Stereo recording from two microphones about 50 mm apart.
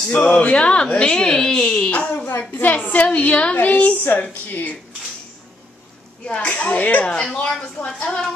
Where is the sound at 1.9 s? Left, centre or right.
Left.